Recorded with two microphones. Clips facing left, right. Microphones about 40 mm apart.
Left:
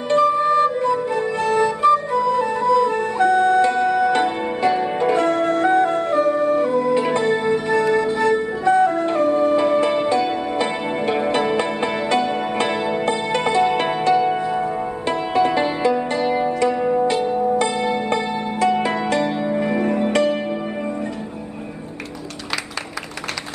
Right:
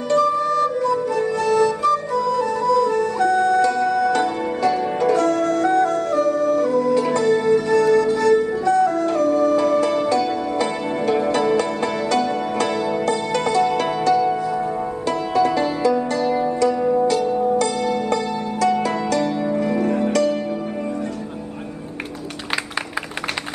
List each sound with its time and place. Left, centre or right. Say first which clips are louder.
0.1 s flute: left 2 dB; left
17.6 s music: even; left